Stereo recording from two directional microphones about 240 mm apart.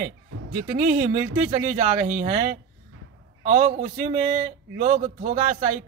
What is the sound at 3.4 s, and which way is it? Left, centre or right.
Speech, right.